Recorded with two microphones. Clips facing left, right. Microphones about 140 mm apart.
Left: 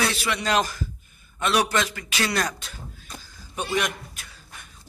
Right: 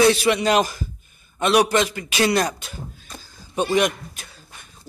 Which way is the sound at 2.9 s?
30° right (ahead or behind).